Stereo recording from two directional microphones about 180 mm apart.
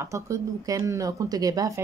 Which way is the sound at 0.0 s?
15° right (ahead or behind).